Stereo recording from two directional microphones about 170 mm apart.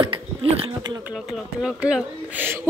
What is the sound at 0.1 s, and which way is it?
Speech, 30° right (ahead or behind).